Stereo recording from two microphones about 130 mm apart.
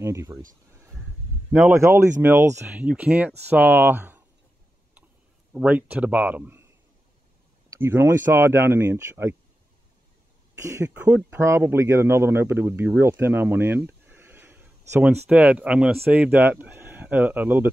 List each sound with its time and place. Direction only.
0.0 s speech: 20° right (ahead or behind)
1.5 s speech: 20° right (ahead or behind)
2.7 s speech: 10° right (ahead or behind)
5.5 s speech: 10° right (ahead or behind)
7.7 s speech: 20° right (ahead or behind)
10.6 s speech: 20° right (ahead or behind)
10.9 s speech: 10° right (ahead or behind)